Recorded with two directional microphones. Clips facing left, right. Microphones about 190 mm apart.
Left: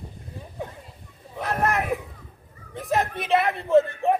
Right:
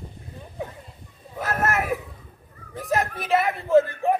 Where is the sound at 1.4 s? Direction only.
5° right (ahead or behind).